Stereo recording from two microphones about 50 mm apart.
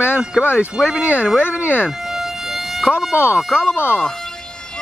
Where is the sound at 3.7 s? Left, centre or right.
Left.